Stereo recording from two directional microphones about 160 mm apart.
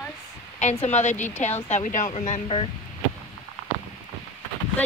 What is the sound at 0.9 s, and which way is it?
Speech, 45° left (ahead or behind).